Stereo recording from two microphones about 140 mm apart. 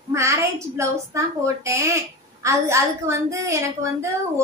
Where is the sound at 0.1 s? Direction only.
20° right (ahead or behind).